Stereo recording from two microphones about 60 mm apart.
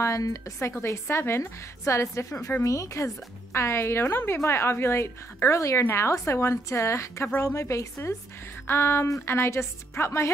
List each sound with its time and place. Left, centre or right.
0.0 s a woman's voice: left
3.5 s a woman's voice: left
8.6 s a woman's voice: left